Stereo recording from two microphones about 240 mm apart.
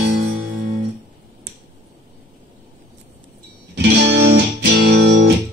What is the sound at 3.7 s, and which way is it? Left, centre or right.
Music, right.